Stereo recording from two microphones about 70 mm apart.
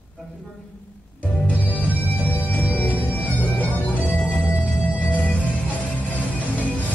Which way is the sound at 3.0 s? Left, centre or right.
Left.